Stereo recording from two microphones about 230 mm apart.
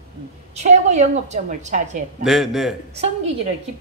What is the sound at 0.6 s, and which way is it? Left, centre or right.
A woman's voice, right.